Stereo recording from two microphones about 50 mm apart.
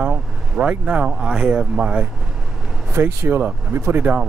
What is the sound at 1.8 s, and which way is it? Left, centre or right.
Speech, right.